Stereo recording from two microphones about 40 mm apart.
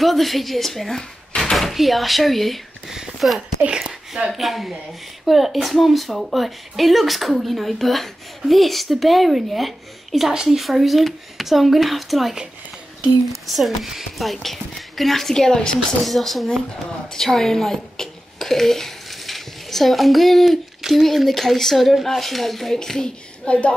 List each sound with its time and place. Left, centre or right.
0.0 s speech: centre
3.2 s speech: centre
10.3 s speech: centre
10.6 s speech: centre
13.5 s speech: centre
16.0 s a child's voice: centre
23.4 s a woman's voice: left